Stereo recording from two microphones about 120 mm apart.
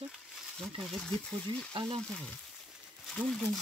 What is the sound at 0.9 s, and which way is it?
Speech, 10° left (ahead or behind).